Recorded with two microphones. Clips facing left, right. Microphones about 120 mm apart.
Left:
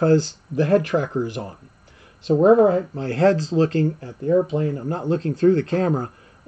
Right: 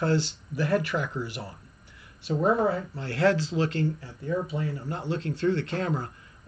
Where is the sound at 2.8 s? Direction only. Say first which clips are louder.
Left 8 dB; 35° left (ahead or behind).